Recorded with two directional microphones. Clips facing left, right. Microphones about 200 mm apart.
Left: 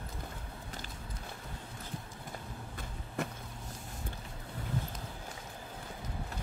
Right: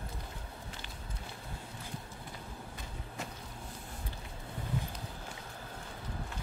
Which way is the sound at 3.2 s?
55° left (ahead or behind).